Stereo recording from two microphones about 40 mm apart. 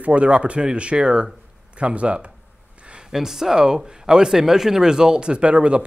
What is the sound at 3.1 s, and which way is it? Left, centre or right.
Speech, centre.